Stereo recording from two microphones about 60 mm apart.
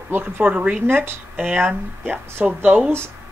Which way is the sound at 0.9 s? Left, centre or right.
Right.